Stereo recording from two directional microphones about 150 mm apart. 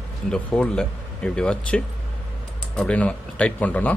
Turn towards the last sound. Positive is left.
turn(degrees=10)  # may be behind; listen again after turning